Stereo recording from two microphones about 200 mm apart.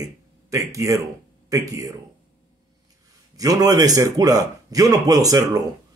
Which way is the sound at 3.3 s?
15° right (ahead or behind).